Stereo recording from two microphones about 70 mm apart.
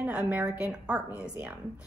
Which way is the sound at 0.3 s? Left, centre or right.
Centre.